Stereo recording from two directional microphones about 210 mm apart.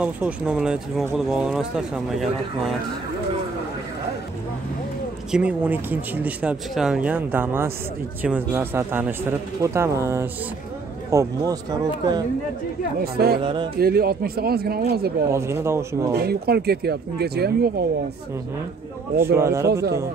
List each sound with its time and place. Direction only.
0.0 s speech: 5° right (ahead or behind)
5.3 s speech: 5° right (ahead or behind)
13.0 s speech: 50° right (ahead or behind)
13.4 s speech: 25° right (ahead or behind)
13.7 s speech: 45° right (ahead or behind)
15.3 s speech: 15° right (ahead or behind)
16.2 s speech: 50° right (ahead or behind)
19.1 s speech: 10° right (ahead or behind)